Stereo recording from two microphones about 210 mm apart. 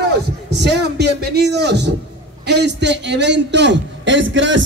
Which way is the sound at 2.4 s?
55° right (ahead or behind).